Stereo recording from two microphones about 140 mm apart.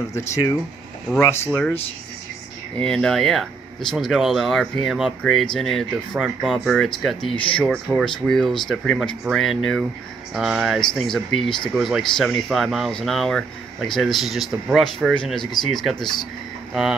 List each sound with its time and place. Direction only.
0.1 s speech: 20° left (ahead or behind)
2.8 s speech: 5° left (ahead or behind)